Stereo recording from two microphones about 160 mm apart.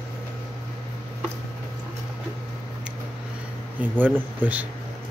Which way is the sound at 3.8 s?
10° right (ahead or behind).